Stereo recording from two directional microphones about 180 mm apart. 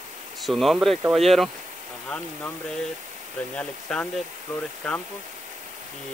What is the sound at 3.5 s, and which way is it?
A man's voice, 5° left (ahead or behind).